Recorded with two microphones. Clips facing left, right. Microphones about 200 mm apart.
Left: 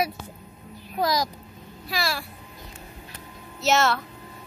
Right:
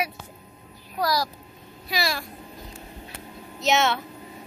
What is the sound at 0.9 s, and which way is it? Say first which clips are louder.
Speech: left 1 dB; 20° left (ahead or behind).